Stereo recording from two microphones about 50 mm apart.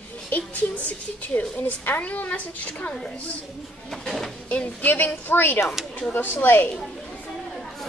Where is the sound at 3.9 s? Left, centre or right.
Centre.